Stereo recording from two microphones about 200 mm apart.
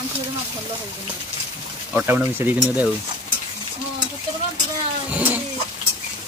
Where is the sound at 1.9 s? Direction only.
10° right (ahead or behind).